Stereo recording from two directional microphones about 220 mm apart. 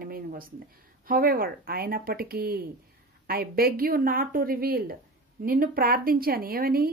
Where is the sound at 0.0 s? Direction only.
40° right (ahead or behind).